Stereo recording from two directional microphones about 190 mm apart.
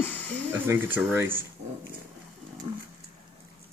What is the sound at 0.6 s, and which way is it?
Speech, 10° right (ahead or behind).